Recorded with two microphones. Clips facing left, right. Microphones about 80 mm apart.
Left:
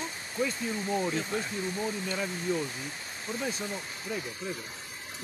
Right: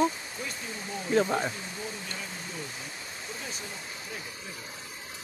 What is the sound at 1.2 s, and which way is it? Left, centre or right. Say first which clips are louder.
Speech: right 5 dB; right.